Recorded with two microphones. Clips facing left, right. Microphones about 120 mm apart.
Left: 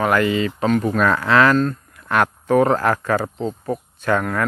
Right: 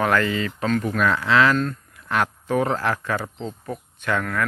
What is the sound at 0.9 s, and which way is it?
Speech, 50° left (ahead or behind).